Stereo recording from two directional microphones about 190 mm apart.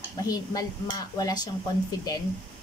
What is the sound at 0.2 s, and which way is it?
Speech, 20° left (ahead or behind).